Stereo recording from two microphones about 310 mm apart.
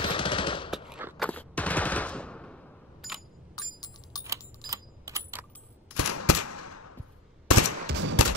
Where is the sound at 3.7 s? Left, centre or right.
Centre.